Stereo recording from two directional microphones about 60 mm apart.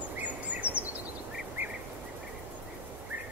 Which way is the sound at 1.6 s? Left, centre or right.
Right.